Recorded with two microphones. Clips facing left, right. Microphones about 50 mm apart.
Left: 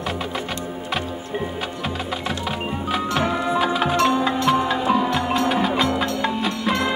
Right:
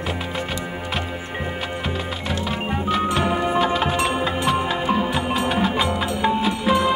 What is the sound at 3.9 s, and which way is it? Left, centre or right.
Music, centre.